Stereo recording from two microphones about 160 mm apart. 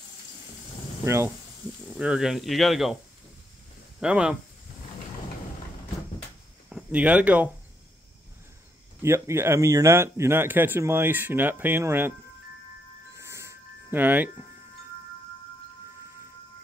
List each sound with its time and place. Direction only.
1.0 s speech: 15° right (ahead or behind)
1.9 s speech: 5° right (ahead or behind)
4.0 s speech: 5° right (ahead or behind)
6.7 s speech: 10° right (ahead or behind)
9.0 s speech: 15° right (ahead or behind)
13.2 s music: 15° right (ahead or behind)